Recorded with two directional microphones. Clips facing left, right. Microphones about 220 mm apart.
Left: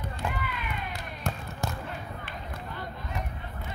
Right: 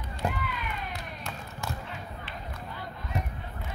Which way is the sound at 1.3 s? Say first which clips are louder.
Left 9 dB; 50° left (ahead or behind).